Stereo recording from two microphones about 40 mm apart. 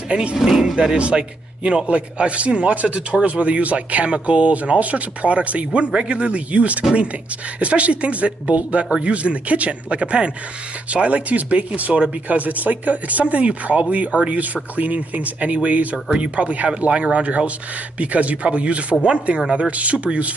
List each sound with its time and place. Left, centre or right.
0.1 s a man's voice: right
0.4 s speech: centre
0.7 s a man's voice: right